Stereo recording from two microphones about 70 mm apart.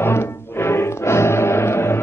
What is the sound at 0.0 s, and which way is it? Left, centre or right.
Music, left.